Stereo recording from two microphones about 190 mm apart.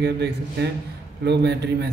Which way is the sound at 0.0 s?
60° right (ahead or behind).